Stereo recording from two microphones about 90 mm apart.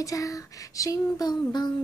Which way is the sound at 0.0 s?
40° left (ahead or behind).